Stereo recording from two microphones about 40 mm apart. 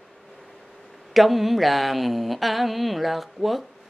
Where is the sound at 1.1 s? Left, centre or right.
Centre.